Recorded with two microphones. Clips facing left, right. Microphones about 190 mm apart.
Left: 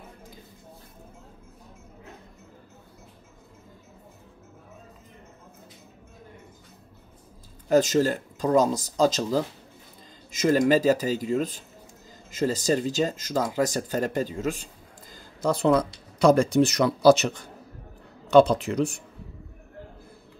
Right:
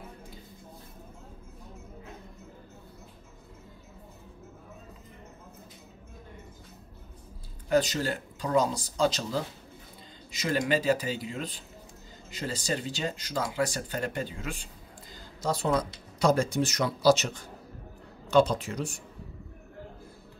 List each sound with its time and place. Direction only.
7.7 s speech: 40° left (ahead or behind)
15.4 s speech: 60° left (ahead or behind)
18.3 s speech: 65° left (ahead or behind)